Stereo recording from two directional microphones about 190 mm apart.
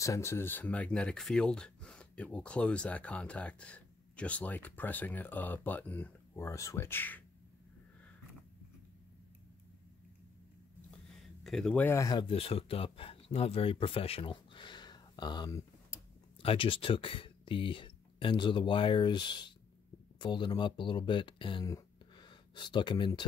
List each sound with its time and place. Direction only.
0.0 s speech: 15° left (ahead or behind)
11.4 s speech: 5° left (ahead or behind); by 23.2 s 25° left (ahead or behind)